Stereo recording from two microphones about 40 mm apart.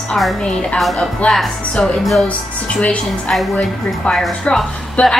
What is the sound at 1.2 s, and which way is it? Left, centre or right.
Speech, left.